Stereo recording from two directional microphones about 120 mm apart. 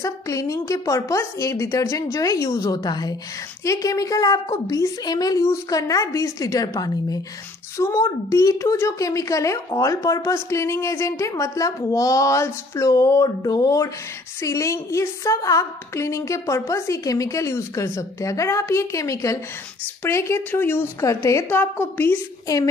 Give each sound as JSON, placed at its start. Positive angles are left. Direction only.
{"t": 0.0, "sound": "a woman's voice", "side_deg": 25}